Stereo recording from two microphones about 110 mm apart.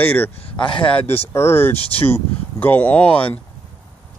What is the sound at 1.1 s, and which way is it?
Speech, 20° left (ahead or behind).